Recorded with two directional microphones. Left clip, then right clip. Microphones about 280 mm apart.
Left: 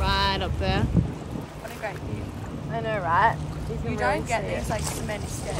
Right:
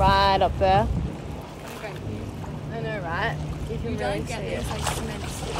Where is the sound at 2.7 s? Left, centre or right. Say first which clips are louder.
Left 6 dB; centre.